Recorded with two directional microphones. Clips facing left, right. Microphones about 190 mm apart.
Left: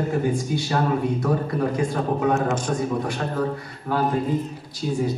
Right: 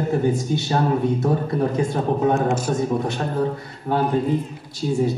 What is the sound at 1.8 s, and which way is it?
Speech, 25° right (ahead or behind).